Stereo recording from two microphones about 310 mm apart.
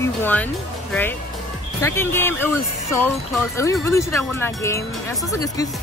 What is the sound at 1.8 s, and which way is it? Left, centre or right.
Speech, centre.